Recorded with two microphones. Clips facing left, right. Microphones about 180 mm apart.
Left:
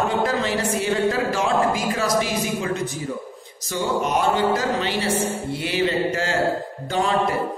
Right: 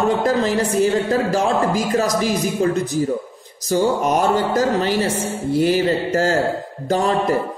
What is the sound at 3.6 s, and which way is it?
Speech, 40° right (ahead or behind).